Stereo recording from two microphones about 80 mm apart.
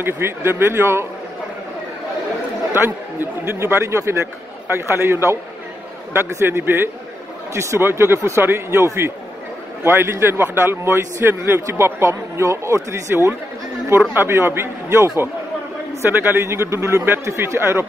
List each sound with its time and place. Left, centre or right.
0.0 s speech: right
2.7 s a man's voice: right